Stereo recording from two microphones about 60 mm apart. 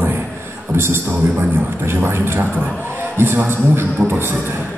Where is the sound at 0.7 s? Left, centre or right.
Right.